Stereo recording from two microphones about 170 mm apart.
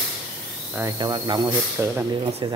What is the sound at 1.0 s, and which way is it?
Speech, 25° right (ahead or behind).